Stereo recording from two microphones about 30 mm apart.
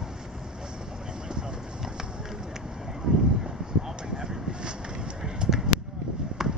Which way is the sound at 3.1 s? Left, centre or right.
Right.